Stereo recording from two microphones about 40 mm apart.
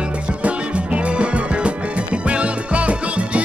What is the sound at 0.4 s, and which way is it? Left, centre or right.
Music, right.